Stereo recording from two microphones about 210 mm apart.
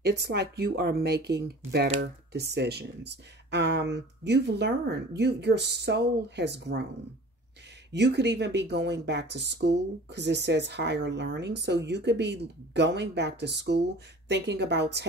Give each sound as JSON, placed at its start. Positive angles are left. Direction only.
{"t": 0.0, "sound": "speech", "side_deg": -50}
{"t": 7.9, "sound": "speech", "side_deg": -55}